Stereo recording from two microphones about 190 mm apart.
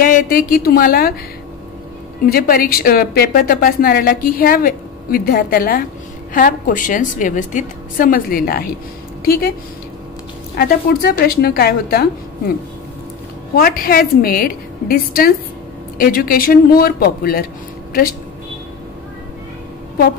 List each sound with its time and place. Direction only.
0.0 s a woman's voice: 50° left (ahead or behind)
2.2 s a woman's voice: 50° left (ahead or behind)
10.6 s a woman's voice: 55° left (ahead or behind)
13.6 s a woman's voice: 50° left (ahead or behind)